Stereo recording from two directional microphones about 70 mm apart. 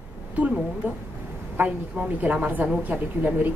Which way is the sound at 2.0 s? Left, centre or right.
Right.